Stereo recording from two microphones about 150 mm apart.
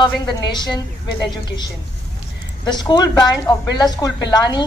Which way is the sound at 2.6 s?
30° left (ahead or behind).